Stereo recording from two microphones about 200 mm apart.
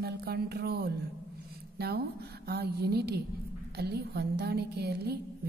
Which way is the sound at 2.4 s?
55° right (ahead or behind).